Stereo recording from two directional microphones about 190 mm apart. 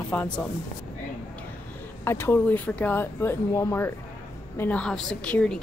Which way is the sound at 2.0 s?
10° left (ahead or behind).